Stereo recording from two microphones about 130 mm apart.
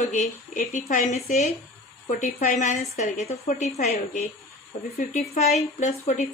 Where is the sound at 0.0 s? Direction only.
70° left (ahead or behind).